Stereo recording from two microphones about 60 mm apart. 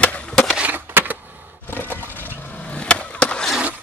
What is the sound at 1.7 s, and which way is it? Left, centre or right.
Roar, left.